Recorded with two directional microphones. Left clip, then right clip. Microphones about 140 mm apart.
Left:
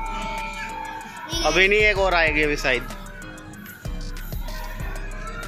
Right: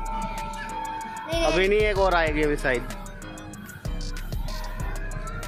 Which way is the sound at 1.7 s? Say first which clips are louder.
Left 4 dB; 10° right (ahead or behind).